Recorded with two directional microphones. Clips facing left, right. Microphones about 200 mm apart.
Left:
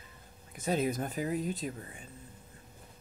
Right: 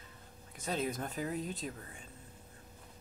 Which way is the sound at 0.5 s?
10° left (ahead or behind).